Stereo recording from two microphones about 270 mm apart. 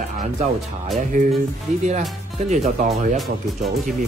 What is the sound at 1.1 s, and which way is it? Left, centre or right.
Speech, right.